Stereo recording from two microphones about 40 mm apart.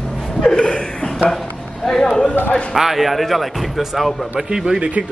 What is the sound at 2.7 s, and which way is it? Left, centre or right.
Speech, centre.